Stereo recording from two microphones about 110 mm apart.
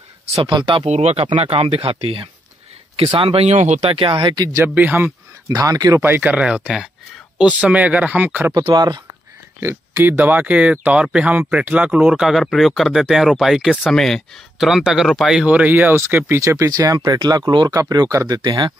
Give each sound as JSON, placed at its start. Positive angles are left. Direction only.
{"t": 0.5, "sound": "speech", "side_deg": -50}
{"t": 0.8, "sound": "speech", "side_deg": -80}
{"t": 1.2, "sound": "speech", "side_deg": -55}
{"t": 3.9, "sound": "speech", "side_deg": -50}
{"t": 4.6, "sound": "speech", "side_deg": -15}
{"t": 5.5, "sound": "speech", "side_deg": -35}
{"t": 6.0, "sound": "speech", "side_deg": -15}
{"t": 8.5, "sound": "speech", "side_deg": -40}
{"t": 9.6, "sound": "speech", "side_deg": -20}
{"t": 15.4, "sound": "speech", "side_deg": -15}